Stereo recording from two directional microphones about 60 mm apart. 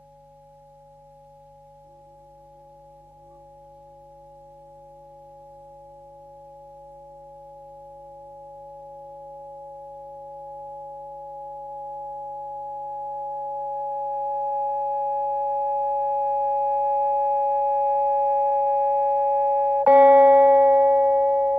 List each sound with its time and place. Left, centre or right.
12.1 s sine wave: right